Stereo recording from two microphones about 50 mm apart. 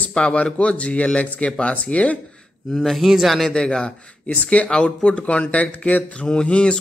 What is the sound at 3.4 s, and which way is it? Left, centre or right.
A man's voice, centre.